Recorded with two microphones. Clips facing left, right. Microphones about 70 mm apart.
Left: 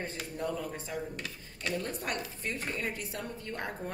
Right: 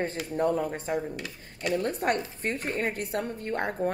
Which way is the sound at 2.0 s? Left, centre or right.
Right.